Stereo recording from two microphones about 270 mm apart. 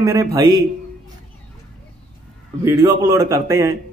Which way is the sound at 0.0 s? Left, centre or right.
Centre.